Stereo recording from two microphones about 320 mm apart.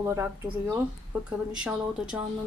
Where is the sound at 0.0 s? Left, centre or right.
Centre.